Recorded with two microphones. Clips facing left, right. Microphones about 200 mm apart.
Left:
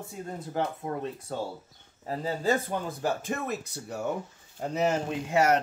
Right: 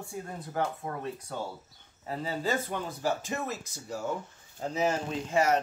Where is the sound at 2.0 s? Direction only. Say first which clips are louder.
Left 4 dB; 40° left (ahead or behind).